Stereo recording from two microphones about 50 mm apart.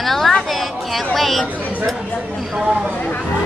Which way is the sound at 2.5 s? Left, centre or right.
Centre.